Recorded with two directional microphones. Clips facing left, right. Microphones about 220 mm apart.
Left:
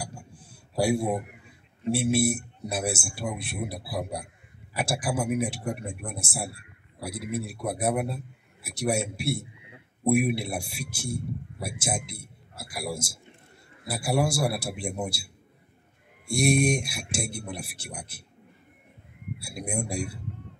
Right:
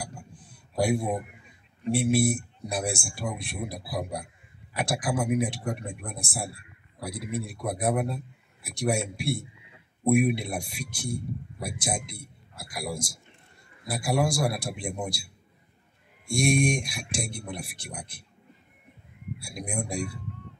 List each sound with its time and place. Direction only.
0.5 s a sound: 10° left (ahead or behind)
2.0 s a man's voice: centre (ahead or behind)
16.3 s speech: 5° left (ahead or behind)
19.4 s speech: 5° left (ahead or behind)